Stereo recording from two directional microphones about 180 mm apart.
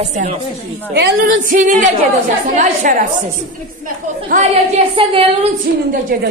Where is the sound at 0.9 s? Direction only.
70° right (ahead or behind).